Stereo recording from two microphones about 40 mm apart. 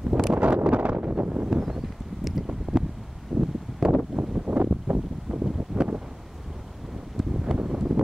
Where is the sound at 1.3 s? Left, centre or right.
Centre.